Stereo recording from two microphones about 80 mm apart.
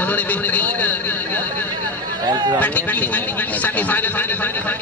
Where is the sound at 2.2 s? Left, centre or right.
Right.